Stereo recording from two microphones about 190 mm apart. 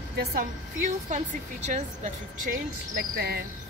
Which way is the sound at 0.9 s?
35° right (ahead or behind).